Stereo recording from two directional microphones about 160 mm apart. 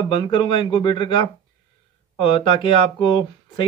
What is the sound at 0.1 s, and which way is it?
Speech, 30° left (ahead or behind).